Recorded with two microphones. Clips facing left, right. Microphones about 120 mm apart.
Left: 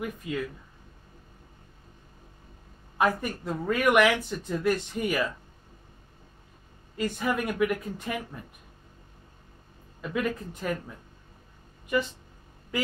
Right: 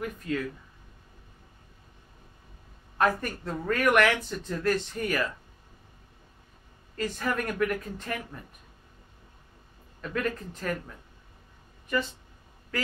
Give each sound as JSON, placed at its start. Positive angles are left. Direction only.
{"t": 0.0, "sound": "speech", "side_deg": 10}
{"t": 3.0, "sound": "speech", "side_deg": 10}
{"t": 7.0, "sound": "speech", "side_deg": 10}
{"t": 10.0, "sound": "speech", "side_deg": 10}
{"t": 12.7, "sound": "quack", "side_deg": 15}